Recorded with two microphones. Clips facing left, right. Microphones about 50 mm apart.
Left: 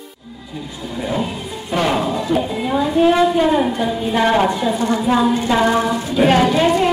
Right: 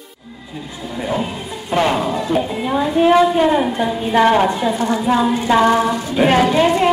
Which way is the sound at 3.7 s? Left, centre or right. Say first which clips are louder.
Right 2 dB; right.